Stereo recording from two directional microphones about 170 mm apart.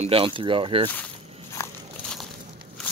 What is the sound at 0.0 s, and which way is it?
Speech, 30° right (ahead or behind).